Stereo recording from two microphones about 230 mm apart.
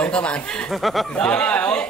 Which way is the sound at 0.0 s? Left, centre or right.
Centre.